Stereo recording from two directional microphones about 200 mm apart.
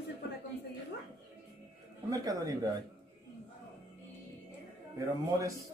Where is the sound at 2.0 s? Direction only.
15° right (ahead or behind).